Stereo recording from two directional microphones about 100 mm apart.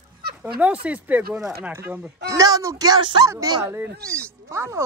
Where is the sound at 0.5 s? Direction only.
15° right (ahead or behind).